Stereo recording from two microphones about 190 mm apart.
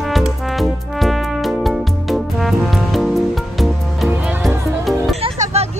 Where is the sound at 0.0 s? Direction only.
Centre (ahead or behind).